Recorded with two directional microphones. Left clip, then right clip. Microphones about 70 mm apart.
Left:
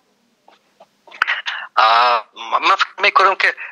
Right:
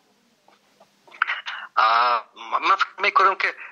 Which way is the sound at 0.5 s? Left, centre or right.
Left.